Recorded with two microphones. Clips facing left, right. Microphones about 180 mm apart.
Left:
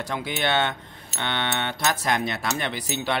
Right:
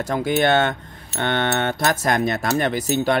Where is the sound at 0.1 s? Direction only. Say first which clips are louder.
Right 8 dB; 45° right (ahead or behind).